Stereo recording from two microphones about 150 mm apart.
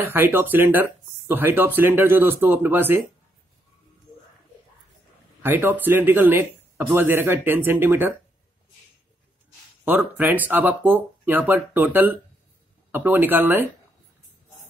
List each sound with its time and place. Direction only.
0.0 s speech: 15° right (ahead or behind)
5.4 s speech: 15° right (ahead or behind)
9.8 s speech: 10° right (ahead or behind)